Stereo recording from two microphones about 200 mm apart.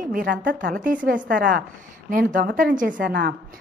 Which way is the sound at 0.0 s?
45° right (ahead or behind).